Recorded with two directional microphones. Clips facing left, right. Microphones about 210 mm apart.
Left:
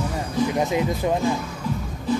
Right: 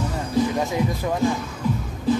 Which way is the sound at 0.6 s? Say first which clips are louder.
Left 1 dB; 20° left (ahead or behind).